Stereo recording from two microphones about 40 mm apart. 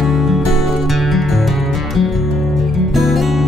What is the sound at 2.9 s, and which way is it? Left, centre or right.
Music, centre.